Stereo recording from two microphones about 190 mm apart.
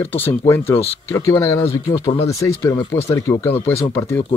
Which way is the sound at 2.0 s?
30° left (ahead or behind).